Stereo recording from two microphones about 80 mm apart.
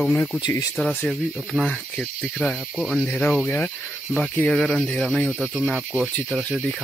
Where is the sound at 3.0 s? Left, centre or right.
Centre.